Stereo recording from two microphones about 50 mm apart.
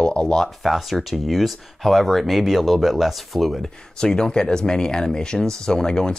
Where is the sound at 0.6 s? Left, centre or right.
Centre.